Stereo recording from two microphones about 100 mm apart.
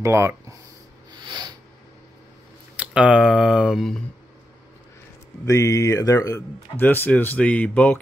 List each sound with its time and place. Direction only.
0.0 s speech: 30° right (ahead or behind)
1.1 s a sound: 45° right (ahead or behind)
2.7 s speech: 10° right (ahead or behind)
5.4 s speech: 30° left (ahead or behind)
6.8 s speech: 20° left (ahead or behind)